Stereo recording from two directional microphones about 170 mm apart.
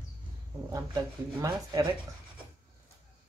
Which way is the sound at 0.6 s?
20° right (ahead or behind).